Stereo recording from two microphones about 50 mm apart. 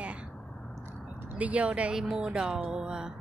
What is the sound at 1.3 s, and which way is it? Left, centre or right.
Speech, right.